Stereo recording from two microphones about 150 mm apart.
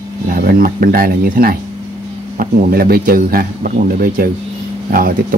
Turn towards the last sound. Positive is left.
turn(degrees=-70)  # may be behind; listen again after turning